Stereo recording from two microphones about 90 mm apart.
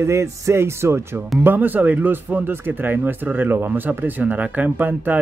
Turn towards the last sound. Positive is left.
turn(degrees=-20)  # may be behind; listen again after turning